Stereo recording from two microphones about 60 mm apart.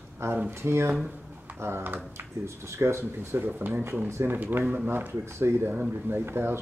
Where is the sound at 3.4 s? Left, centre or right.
Right.